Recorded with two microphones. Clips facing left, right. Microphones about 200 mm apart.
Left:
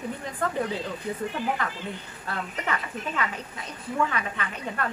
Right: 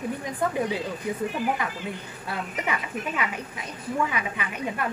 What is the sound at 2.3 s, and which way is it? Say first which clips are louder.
A woman's voice: right 1 dB; 15° right (ahead or behind).